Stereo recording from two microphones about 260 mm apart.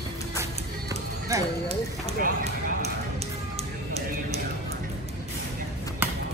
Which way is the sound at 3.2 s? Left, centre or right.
Right.